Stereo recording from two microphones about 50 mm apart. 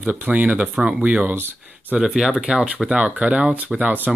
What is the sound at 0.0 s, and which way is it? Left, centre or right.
Speech, right.